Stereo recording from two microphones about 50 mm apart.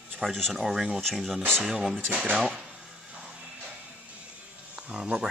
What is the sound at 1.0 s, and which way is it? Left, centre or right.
Speech, centre.